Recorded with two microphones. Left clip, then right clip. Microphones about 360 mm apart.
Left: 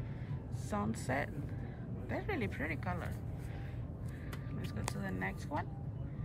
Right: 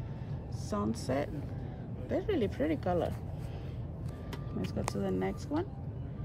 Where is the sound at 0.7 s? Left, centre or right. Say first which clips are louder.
Right 3 dB; centre.